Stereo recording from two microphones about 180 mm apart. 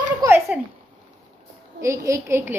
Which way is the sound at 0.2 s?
20° right (ahead or behind).